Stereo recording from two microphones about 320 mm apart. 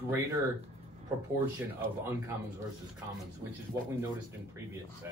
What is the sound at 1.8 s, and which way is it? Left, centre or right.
Speech, centre.